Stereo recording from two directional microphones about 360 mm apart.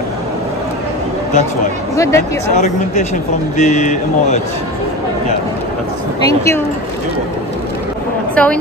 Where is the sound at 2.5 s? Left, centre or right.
Centre.